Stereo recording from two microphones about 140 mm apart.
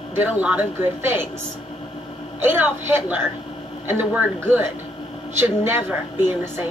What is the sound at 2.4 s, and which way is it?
Speech, 15° right (ahead or behind).